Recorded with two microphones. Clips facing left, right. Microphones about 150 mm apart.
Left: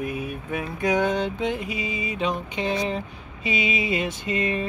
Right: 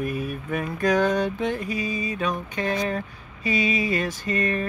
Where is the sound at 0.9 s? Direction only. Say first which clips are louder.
Right 1 dB; 20° left (ahead or behind).